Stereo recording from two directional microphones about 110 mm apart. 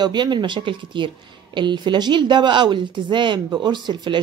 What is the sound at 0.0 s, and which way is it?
A woman's voice, 45° right (ahead or behind).